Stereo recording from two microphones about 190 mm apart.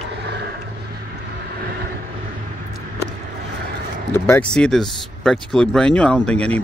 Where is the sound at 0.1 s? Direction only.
60° right (ahead or behind).